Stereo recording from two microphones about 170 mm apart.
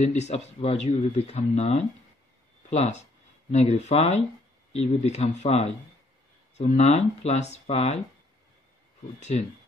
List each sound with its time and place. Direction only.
0.2 s speech: 40° left (ahead or behind)